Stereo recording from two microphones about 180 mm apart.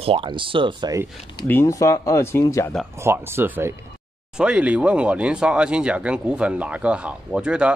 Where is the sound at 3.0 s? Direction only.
15° right (ahead or behind).